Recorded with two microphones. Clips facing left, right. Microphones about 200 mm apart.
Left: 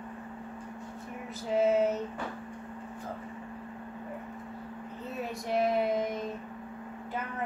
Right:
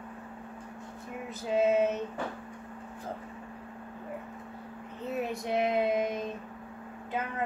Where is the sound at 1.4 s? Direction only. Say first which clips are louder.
Even; 20° right (ahead or behind).